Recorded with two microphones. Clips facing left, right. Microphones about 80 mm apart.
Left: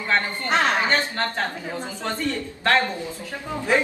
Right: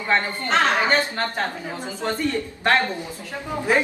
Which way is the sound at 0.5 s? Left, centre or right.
Left.